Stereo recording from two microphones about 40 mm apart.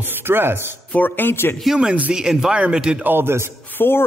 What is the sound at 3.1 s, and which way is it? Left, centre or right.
Speech, right.